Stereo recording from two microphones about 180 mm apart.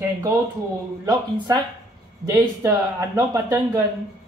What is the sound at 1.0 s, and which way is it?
Speech, 20° right (ahead or behind).